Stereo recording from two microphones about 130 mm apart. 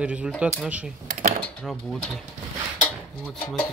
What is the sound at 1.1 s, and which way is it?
Speech, 90° right.